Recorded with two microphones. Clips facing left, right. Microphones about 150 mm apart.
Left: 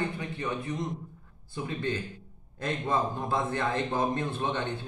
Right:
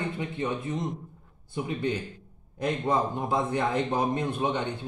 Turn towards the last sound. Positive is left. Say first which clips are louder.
# right 3 dB
turn(degrees=-15)  # may be behind; listen again after turning